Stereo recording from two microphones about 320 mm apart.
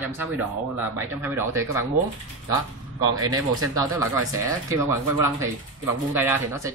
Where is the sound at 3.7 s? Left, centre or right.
Centre.